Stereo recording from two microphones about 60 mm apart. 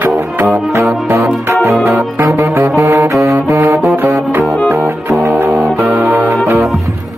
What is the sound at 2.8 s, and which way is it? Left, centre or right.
Music, right.